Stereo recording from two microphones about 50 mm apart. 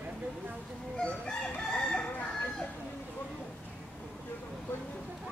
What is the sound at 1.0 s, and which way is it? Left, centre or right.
Crowing, centre.